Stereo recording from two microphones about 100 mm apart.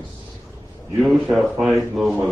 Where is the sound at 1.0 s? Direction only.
Centre (ahead or behind).